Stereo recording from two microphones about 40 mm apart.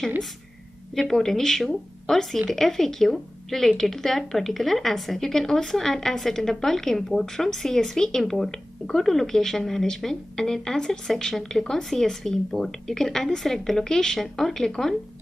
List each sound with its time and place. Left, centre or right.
0.9 s speech: centre